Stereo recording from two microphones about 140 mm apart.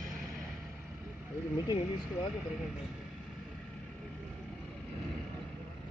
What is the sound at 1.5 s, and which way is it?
Speech, 30° left (ahead or behind).